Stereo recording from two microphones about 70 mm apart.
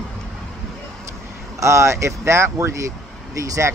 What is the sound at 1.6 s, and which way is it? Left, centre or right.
Speech, right.